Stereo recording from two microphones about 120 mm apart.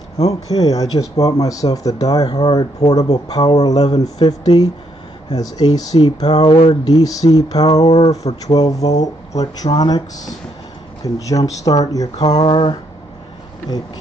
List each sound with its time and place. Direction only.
0.3 s speech: 30° left (ahead or behind)